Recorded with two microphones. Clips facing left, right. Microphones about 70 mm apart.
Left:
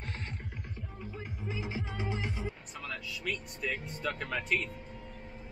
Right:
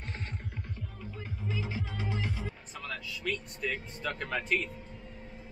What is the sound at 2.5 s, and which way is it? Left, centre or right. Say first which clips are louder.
Speech: right 1 dB; centre.